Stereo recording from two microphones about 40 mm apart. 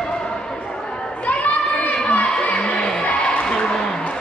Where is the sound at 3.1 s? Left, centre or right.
Left.